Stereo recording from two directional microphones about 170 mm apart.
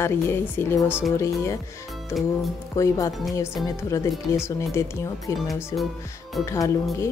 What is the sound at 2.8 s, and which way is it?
Speech, 20° left (ahead or behind).